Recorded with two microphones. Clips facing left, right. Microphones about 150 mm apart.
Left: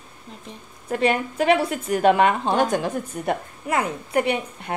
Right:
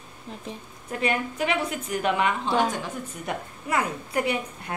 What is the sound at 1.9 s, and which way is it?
Speech, 50° left (ahead or behind).